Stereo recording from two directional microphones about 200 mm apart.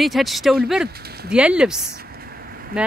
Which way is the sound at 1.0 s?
50° right (ahead or behind).